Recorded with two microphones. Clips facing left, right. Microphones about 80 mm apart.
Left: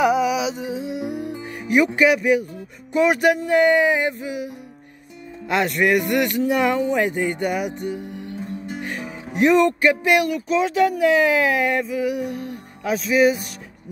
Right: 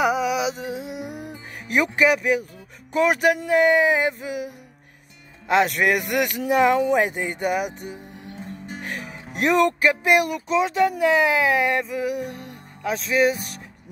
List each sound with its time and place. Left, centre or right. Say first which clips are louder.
0.0 s music: left 3 dB; centre
2.9 s speech: left 2 dB; centre
5.5 s speech: even; centre
6.8 s speech: even; centre
7.3 s speech: left 1 dB; centre
7.9 s music: left 8 dB; left
8.6 s music: left 3 dB; centre
10.0 s speech: left 1 dB; centre